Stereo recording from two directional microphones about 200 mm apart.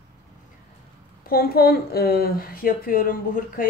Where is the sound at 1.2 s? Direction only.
50° left (ahead or behind).